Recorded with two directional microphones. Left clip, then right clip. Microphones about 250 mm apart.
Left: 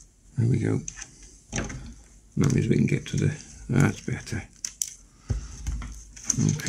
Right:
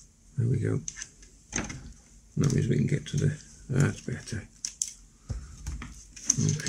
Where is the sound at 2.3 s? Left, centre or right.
Left.